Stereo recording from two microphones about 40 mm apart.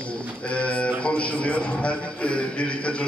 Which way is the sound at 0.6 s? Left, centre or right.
Left.